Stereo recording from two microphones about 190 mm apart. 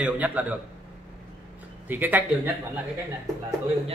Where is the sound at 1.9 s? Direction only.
10° right (ahead or behind).